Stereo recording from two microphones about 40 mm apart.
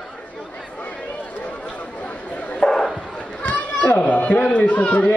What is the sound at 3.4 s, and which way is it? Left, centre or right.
Children playing, left.